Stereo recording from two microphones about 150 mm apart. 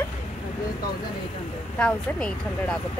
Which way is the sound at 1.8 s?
5° left (ahead or behind).